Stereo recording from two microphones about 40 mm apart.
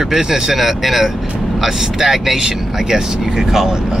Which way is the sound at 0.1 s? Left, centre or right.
Centre.